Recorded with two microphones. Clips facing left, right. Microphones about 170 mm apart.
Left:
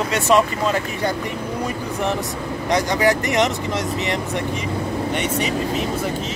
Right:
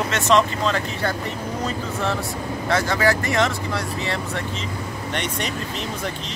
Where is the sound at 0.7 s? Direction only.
15° left (ahead or behind).